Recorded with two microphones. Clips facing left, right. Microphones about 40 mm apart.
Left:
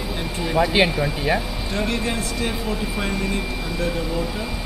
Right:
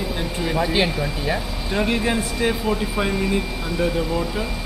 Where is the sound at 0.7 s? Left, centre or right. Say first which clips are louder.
Left 2 dB; centre.